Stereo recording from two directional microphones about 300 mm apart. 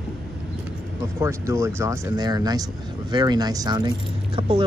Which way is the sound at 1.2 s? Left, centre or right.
Centre.